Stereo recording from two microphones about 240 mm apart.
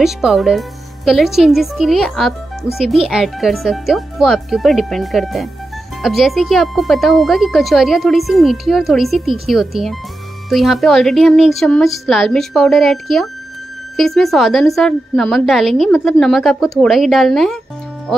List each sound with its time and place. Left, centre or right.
0.0 s a woman's voice: centre